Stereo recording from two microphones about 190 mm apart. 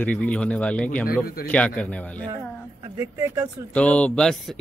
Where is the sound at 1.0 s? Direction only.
50° left (ahead or behind).